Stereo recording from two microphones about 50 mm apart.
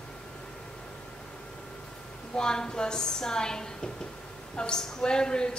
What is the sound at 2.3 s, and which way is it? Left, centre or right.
Speech, centre.